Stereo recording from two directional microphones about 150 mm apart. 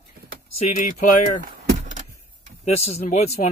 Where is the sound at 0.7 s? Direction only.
50° left (ahead or behind).